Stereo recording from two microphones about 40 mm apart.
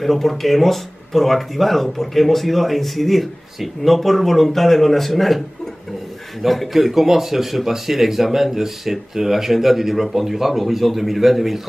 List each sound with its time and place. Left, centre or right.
0.0 s speech: centre
6.4 s speech: centre